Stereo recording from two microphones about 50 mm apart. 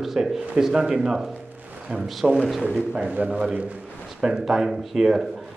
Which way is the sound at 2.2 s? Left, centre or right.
Centre.